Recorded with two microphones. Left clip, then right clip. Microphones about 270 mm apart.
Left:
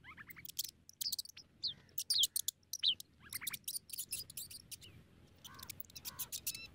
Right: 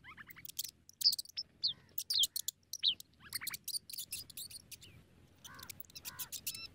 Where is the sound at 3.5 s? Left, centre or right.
Centre.